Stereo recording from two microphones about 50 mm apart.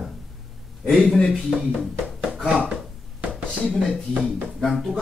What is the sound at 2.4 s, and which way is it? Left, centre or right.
Speech, centre.